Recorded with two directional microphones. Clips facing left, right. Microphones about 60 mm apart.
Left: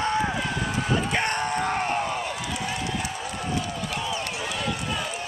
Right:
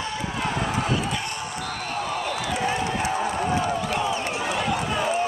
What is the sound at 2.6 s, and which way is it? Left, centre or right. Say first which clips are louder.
Run: right 6 dB; right.